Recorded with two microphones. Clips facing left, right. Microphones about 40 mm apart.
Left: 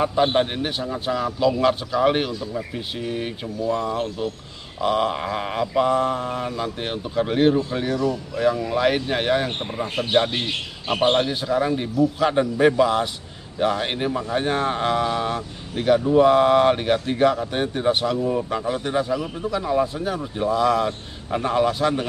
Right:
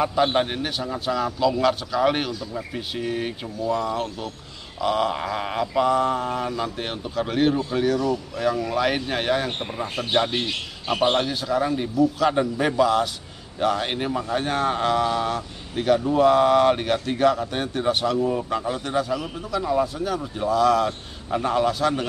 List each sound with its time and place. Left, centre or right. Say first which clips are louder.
0.0 s mantra: left 1 dB; centre
0.3 s speech: left 2 dB; centre
1.0 s mantra: left 1 dB; centre
2.5 s speech: left 1 dB; centre
3.7 s mantra: right 1 dB; centre
18.2 s speech: left 1 dB; centre
18.9 s a man's voice: left 2 dB; centre
20.3 s mantra: right 1 dB; centre